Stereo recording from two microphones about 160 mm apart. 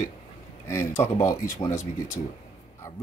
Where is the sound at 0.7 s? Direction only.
15° left (ahead or behind).